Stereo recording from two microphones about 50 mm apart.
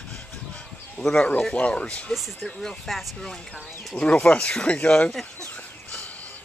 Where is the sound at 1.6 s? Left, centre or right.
Left.